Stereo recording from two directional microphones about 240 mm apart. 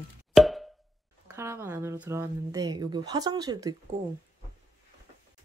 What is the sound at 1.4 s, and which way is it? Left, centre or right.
Speech, centre.